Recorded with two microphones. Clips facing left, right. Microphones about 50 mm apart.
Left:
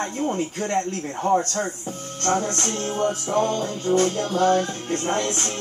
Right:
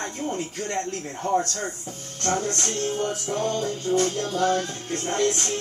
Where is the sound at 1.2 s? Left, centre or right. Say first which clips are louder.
Left 3 dB; left.